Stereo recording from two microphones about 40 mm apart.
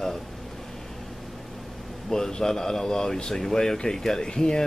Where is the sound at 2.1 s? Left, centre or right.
Centre.